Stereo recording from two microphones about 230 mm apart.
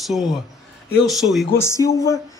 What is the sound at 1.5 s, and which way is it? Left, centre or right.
Speech, centre.